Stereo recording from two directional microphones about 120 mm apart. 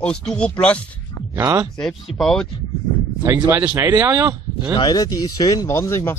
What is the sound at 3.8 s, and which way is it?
Speech, 15° right (ahead or behind).